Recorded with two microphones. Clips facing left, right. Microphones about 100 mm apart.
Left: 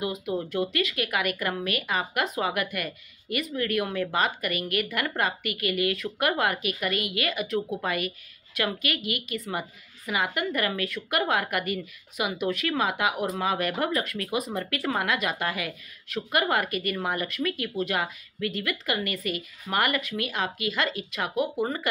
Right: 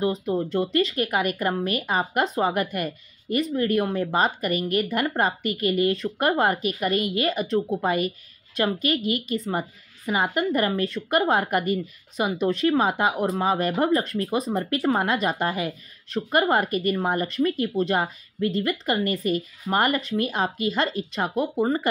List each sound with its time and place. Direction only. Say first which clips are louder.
0.0 s a woman's voice: right 5 dB; 35° right (ahead or behind)